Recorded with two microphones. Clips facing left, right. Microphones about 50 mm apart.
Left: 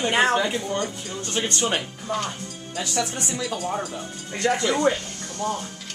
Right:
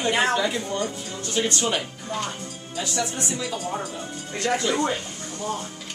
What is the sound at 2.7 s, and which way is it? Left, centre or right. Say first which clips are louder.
Speech: even; left.